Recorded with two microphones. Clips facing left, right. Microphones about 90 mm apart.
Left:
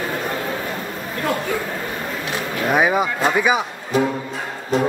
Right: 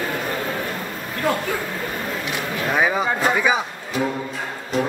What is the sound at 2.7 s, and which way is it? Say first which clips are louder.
Speech: left 3 dB; 15° left (ahead or behind).